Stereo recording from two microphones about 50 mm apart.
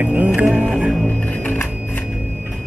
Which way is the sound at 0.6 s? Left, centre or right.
Centre.